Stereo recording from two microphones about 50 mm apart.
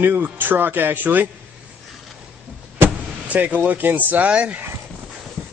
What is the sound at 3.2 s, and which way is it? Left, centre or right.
Speech, right.